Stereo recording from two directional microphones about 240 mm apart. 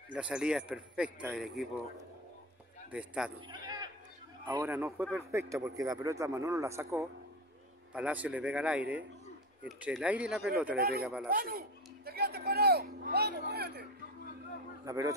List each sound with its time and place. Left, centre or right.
0.1 s speech: centre
2.9 s speech: centre
3.4 s a sound: centre
4.5 s a man's voice: centre
10.8 s speech: right
14.9 s a man's voice: centre